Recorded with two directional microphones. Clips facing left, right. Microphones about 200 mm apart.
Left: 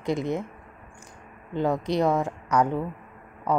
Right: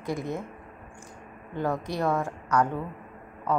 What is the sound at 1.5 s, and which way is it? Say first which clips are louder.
A woman's voice: left 5 dB; 20° left (ahead or behind).